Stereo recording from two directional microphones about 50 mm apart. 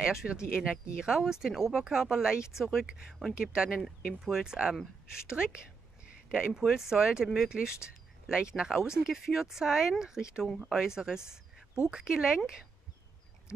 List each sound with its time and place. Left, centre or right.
0.0 s speech: centre
2.6 s speech: centre
3.3 s speech: centre
6.6 s speech: centre